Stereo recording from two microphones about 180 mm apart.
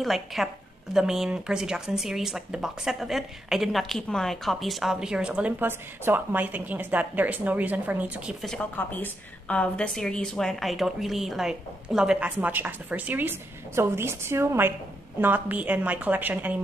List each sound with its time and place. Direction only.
0.0 s a woman's voice: centre (ahead or behind)